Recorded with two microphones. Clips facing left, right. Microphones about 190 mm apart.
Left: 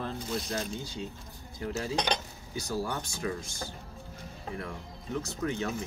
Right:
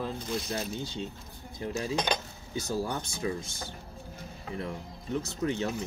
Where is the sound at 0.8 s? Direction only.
25° right (ahead or behind).